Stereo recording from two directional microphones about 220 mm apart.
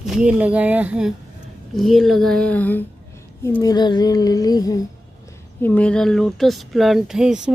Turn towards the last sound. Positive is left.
turn(degrees=-5)  # may be behind; listen again after turning